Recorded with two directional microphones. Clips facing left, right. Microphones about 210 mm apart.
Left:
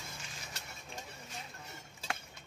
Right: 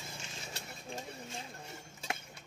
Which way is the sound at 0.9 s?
30° right (ahead or behind).